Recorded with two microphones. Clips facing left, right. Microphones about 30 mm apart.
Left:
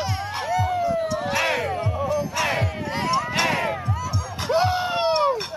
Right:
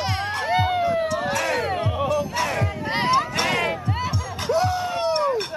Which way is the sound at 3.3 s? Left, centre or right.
Centre.